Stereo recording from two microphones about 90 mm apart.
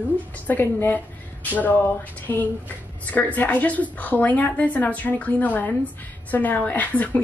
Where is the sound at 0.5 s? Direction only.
20° left (ahead or behind).